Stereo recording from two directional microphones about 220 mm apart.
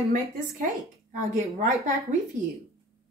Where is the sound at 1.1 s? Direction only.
35° right (ahead or behind).